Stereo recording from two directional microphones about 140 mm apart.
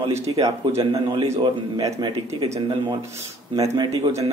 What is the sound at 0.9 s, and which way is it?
Speech, 40° right (ahead or behind).